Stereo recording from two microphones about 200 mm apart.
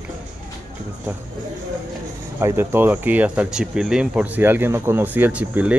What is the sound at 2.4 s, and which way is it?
Speech, 15° right (ahead or behind).